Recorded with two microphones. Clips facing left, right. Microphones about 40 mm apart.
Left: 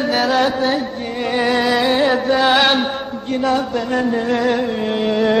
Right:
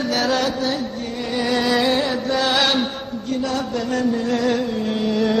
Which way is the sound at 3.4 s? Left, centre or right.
Left.